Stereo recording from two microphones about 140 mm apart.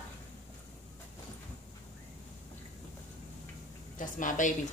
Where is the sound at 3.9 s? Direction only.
65° left (ahead or behind).